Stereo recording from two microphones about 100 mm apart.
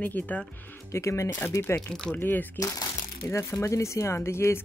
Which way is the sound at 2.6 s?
30° left (ahead or behind).